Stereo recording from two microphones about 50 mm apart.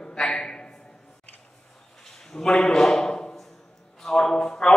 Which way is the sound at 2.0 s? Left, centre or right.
Centre.